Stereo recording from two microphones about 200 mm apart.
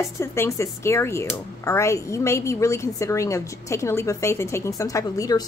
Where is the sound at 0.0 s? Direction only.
15° left (ahead or behind).